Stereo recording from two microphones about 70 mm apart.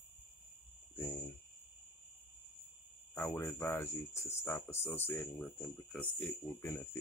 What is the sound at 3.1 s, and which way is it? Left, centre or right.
Speech, left.